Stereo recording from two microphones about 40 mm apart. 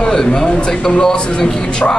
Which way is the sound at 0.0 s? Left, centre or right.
Centre.